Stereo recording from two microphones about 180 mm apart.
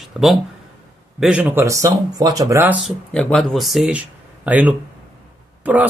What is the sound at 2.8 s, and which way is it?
Speech, 5° left (ahead or behind).